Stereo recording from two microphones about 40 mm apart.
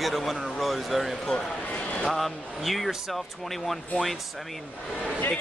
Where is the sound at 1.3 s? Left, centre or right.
Centre.